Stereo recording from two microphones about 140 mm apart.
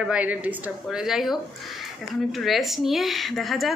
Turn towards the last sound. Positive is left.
turn(degrees=0)  # may be behind; listen again after turning